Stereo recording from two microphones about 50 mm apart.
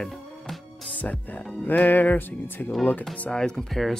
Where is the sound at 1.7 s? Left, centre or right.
Left.